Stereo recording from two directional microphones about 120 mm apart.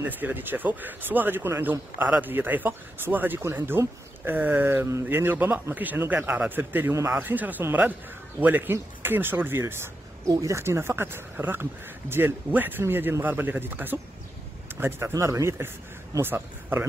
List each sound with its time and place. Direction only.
0.0 s speech: 15° right (ahead or behind)